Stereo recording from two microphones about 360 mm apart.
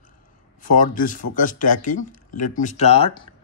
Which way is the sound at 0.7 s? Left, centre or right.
Left.